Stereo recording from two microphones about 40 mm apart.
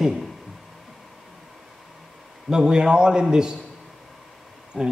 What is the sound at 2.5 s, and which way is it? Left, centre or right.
Speech, centre.